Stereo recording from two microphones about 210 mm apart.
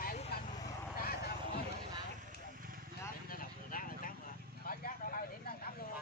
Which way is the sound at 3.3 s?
40° left (ahead or behind).